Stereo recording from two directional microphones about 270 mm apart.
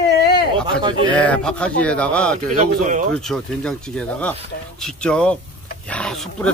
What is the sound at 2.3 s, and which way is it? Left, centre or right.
Speech, right.